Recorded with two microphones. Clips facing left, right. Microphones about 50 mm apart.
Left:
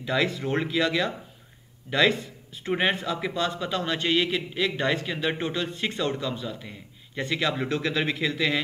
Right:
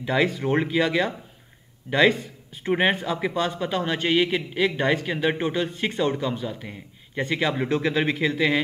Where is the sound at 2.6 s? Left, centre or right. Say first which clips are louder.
Right 3 dB; right.